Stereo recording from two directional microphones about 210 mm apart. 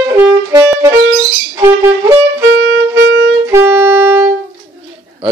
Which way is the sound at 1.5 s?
10° right (ahead or behind).